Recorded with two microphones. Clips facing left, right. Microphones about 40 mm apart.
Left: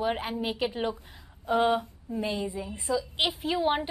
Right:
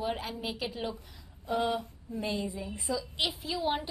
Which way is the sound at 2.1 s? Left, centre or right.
Left.